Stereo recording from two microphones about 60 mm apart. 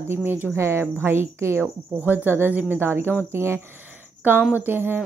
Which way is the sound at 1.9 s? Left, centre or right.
Right.